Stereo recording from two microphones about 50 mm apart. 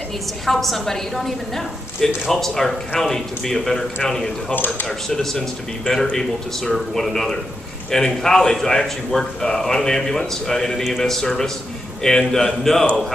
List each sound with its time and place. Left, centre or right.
0.5 s a woman's voice: centre